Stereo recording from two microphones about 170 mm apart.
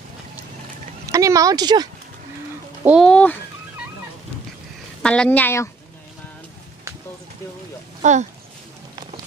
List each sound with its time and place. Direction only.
1.1 s speech: 20° right (ahead or behind)
2.8 s speech: 5° right (ahead or behind)
3.1 s speech: 5° left (ahead or behind)
5.0 s speech: 5° left (ahead or behind)
8.0 s speech: 45° right (ahead or behind)